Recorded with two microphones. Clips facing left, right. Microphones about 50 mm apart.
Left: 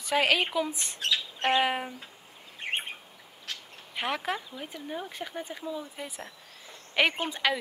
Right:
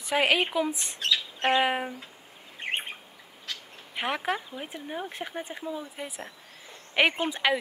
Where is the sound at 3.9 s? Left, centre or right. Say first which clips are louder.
Right 2 dB; centre.